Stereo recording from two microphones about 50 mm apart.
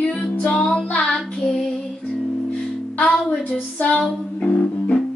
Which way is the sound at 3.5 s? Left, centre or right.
Left.